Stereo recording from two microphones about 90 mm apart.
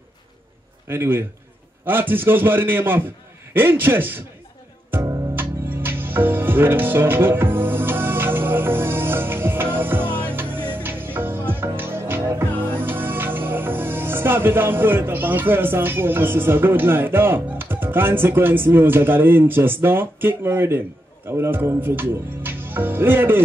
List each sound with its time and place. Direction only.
0.8 s speech: 25° right (ahead or behind)
5.3 s music: 25° right (ahead or behind)
12.7 s speech: 25° right (ahead or behind)